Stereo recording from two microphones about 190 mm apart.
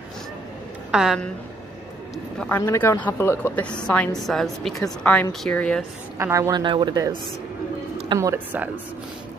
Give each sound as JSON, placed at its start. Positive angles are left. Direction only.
{"t": 0.9, "sound": "speech", "side_deg": 0}
{"t": 2.3, "sound": "a woman's voice", "side_deg": 10}
{"t": 6.1, "sound": "a woman's voice", "side_deg": -15}